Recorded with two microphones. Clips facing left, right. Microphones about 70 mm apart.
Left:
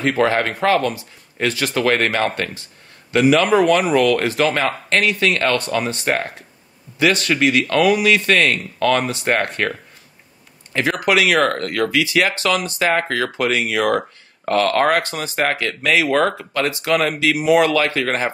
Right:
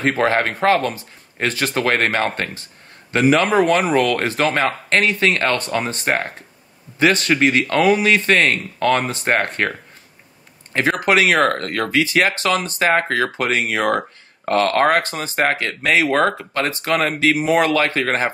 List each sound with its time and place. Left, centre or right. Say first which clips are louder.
0.0 s speech: even; right